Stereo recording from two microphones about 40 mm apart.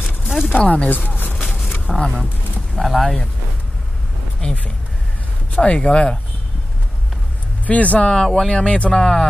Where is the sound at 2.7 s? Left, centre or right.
Centre.